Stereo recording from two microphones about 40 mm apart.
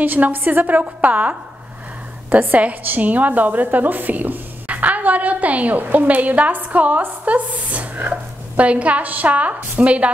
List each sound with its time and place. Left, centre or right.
0.0 s a woman's voice: right
2.5 s a woman's voice: right